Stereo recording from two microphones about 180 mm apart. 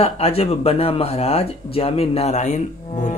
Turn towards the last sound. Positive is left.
turn(degrees=40)  # may be behind; listen again after turning